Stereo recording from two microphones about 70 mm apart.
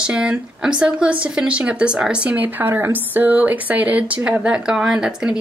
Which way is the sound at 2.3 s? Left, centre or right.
Right.